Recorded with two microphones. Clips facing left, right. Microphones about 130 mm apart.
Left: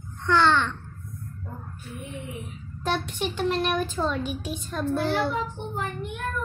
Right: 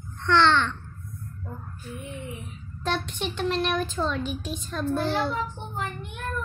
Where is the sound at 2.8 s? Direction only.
10° left (ahead or behind).